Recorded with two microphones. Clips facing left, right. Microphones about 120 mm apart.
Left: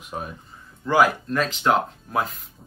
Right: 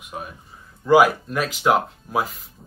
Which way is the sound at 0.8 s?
10° right (ahead or behind).